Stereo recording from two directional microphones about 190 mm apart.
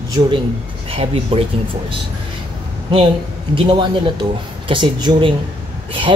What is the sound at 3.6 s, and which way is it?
Speech, 25° right (ahead or behind).